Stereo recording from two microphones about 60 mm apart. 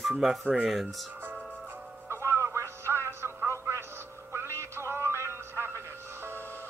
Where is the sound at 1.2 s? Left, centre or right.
Right.